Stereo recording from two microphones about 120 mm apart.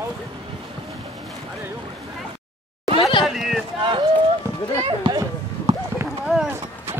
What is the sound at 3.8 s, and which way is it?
Run, 40° right (ahead or behind).